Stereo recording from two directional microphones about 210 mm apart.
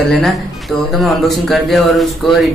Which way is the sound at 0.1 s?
Centre (ahead or behind).